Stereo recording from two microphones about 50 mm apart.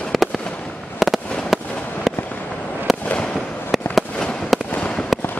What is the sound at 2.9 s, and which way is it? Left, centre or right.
Fireworks, centre.